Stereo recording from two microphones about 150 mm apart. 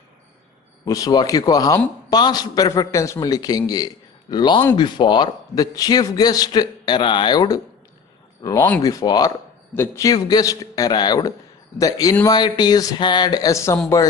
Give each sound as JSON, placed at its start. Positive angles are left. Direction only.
{"t": 0.8, "sound": "a man's voice", "side_deg": 25}